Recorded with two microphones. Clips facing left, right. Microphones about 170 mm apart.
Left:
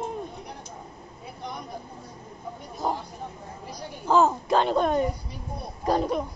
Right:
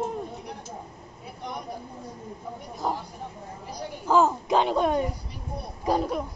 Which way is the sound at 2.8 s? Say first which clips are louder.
Left 1 dB; centre (ahead or behind).